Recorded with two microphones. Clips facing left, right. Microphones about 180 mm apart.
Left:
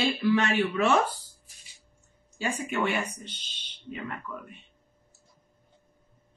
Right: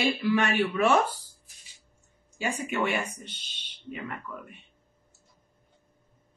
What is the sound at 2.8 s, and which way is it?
Speech, 45° right (ahead or behind).